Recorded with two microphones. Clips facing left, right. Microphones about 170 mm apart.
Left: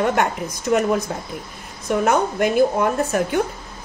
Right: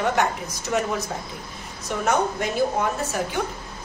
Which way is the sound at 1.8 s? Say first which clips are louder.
Left 4 dB; 55° left (ahead or behind).